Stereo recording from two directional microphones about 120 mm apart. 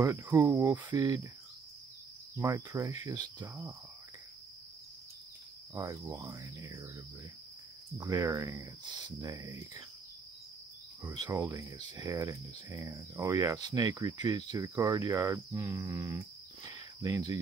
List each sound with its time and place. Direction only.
0.0 s speech: 25° right (ahead or behind)
0.5 s cricket: 15° right (ahead or behind)
0.8 s cricket: 30° right (ahead or behind)
2.3 s speech: 25° right (ahead or behind)
5.8 s speech: 25° right (ahead or behind)
8.0 s speech: 25° right (ahead or behind)
11.0 s cricket: 25° right (ahead or behind)
11.3 s speech: 30° right (ahead or behind)
16.6 s cricket: 30° right (ahead or behind)